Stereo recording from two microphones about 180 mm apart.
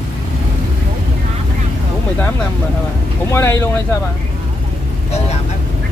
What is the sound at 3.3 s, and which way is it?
Speech, 15° left (ahead or behind).